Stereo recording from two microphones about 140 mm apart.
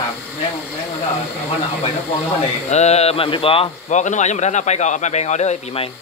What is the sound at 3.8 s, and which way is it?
Speech, 60° left (ahead or behind).